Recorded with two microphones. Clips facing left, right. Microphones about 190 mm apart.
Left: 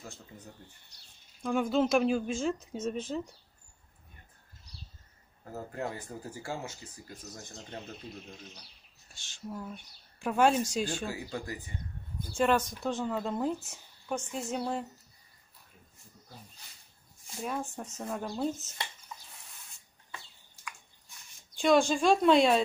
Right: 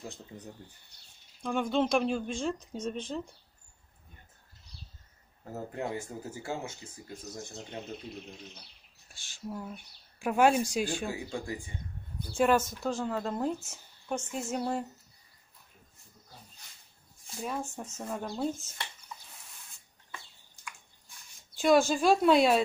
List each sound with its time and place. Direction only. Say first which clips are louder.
0.0 s speech: right 4 dB; 15° right (ahead or behind)
1.4 s speech: left 1 dB; 5° left (ahead or behind)
5.7 s speech: right 2 dB; 25° right (ahead or behind)
9.1 s speech: right 1 dB; 10° right (ahead or behind)
12.4 s speech: right 2 dB; 5° right (ahead or behind)
17.4 s speech: even; centre (ahead or behind)
21.5 s speech: right 1 dB; 5° right (ahead or behind)